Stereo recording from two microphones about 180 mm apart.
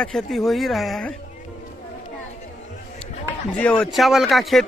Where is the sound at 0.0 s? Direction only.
Centre (ahead or behind).